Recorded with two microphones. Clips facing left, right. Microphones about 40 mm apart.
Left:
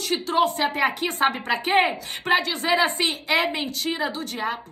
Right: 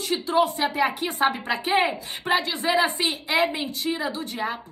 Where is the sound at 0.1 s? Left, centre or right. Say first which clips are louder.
Even; left.